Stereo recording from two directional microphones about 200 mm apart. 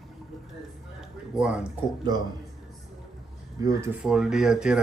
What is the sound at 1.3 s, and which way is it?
Speech, 5° right (ahead or behind).